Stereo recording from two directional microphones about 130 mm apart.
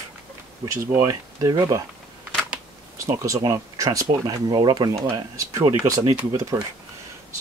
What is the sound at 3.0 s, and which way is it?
Speech, 25° right (ahead or behind).